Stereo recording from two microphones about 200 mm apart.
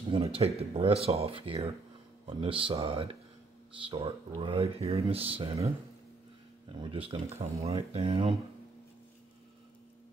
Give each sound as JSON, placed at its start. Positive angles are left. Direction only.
{"t": 0.1, "sound": "a sound", "side_deg": -30}
{"t": 0.6, "sound": "speech", "side_deg": -30}
{"t": 6.8, "sound": "speech", "side_deg": -25}